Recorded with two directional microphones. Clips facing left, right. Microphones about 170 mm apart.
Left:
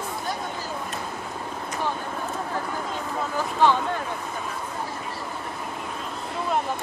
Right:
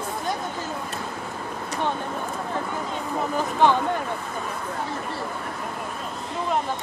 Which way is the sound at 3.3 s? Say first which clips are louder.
Right 1 dB; 15° right (ahead or behind).